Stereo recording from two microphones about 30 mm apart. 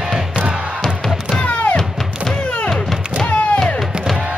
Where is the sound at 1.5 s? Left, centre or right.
Left.